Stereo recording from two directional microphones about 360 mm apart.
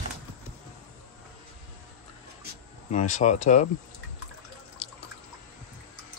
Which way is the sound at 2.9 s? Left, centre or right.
Centre.